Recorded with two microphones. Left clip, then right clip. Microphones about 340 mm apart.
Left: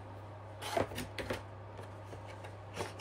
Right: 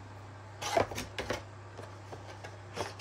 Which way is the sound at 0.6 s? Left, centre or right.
Right.